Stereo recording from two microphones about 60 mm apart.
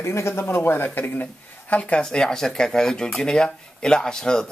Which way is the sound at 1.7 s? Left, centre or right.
Centre.